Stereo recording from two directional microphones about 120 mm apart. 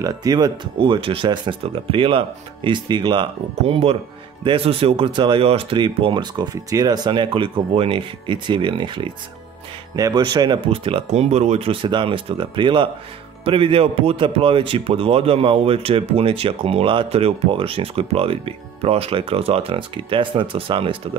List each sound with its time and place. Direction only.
0.0 s speech: 30° right (ahead or behind)
0.7 s speech: 45° right (ahead or behind)
9.9 s speech: 35° right (ahead or behind)
10.7 s speech: 50° right (ahead or behind)